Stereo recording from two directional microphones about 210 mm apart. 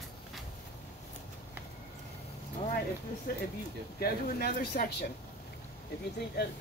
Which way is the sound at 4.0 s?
45° left (ahead or behind).